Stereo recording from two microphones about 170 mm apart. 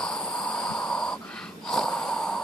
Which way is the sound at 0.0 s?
5° left (ahead or behind).